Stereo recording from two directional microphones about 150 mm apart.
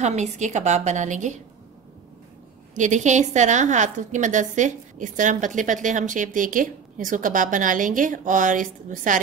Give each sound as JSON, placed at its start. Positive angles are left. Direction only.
{"t": 0.0, "sound": "a woman's voice", "side_deg": -50}
{"t": 2.7, "sound": "a woman's voice", "side_deg": -55}